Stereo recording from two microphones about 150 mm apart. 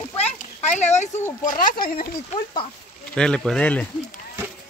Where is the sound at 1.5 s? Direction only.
70° left (ahead or behind).